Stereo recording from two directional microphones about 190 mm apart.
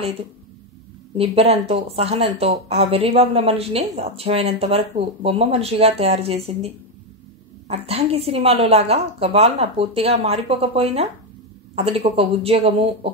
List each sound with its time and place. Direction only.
1.1 s a woman's voice: 30° right (ahead or behind)